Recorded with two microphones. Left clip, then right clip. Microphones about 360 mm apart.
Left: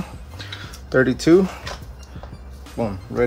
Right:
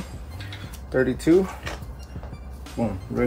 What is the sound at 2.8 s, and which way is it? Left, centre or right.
Speech, centre.